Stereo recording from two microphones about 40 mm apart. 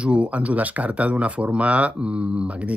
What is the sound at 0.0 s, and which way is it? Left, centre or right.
Speech, right.